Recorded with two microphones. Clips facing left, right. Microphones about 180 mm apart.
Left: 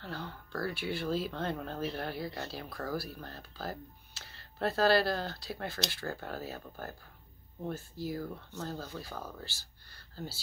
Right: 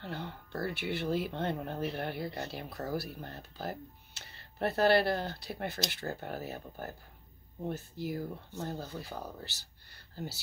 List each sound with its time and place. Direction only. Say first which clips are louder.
0.0 s speech: right 1 dB; 20° right (ahead or behind)